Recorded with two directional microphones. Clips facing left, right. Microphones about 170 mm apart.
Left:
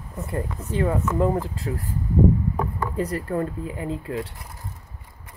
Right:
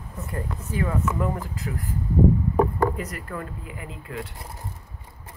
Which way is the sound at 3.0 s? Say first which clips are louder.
Left 8 dB; 30° left (ahead or behind).